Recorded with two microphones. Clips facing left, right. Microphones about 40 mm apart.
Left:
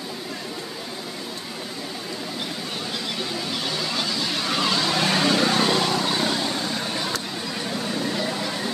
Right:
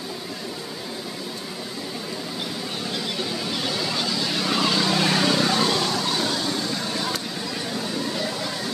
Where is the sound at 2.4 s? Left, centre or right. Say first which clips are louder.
Even; centre.